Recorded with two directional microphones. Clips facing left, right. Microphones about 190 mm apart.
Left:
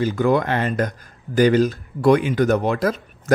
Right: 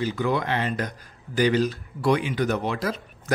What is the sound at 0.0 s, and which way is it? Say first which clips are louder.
Speech: left 6 dB; 50° left (ahead or behind).